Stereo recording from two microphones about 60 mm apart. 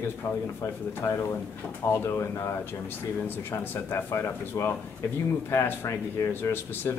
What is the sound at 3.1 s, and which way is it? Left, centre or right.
Speech, left.